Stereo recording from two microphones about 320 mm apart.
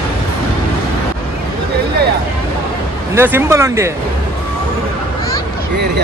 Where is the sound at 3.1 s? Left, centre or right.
Centre.